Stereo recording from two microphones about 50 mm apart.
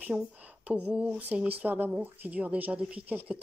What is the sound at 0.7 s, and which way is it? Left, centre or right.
Speech, right.